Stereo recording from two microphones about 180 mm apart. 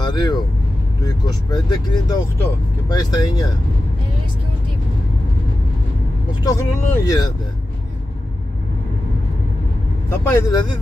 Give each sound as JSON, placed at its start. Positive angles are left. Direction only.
{"t": 0.0, "sound": "speech", "side_deg": 25}
{"t": 6.4, "sound": "speech", "side_deg": 20}
{"t": 10.0, "sound": "speech", "side_deg": 20}